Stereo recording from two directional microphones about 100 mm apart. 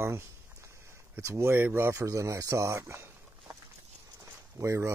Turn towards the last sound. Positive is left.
turn(degrees=-30)  # may be behind; listen again after turning